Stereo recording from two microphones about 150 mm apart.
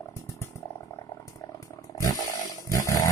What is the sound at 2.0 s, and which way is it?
Chainsaw, 25° left (ahead or behind).